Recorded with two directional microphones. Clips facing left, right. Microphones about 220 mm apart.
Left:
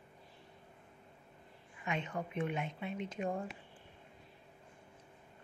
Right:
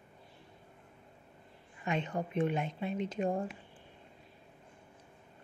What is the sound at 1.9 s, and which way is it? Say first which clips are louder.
Speech: right 4 dB; 35° right (ahead or behind).